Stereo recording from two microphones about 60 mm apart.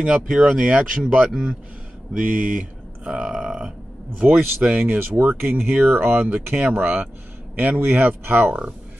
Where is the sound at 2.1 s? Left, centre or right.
Right.